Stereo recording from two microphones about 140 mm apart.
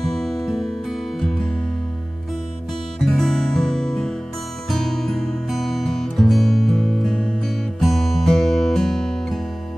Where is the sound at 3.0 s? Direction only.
5° left (ahead or behind).